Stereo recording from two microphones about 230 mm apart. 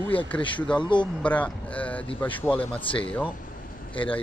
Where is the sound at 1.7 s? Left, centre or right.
Centre.